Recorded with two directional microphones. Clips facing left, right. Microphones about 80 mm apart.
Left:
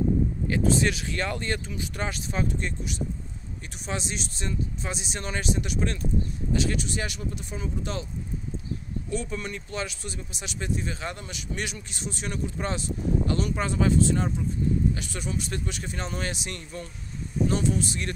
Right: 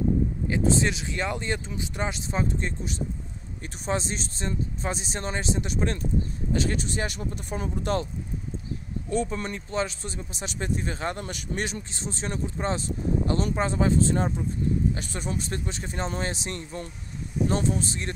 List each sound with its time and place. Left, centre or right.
0.5 s speech: right
7.5 s speech: right
9.1 s speech: right
11.6 s speech: right